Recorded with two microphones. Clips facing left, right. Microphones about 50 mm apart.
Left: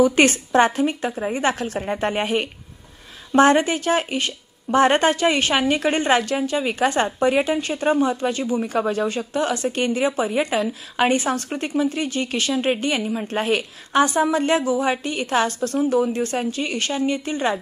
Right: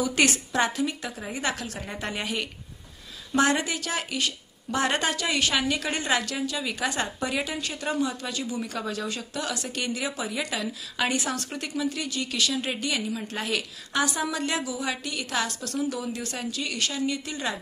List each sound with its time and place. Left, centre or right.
0.0 s a woman's voice: left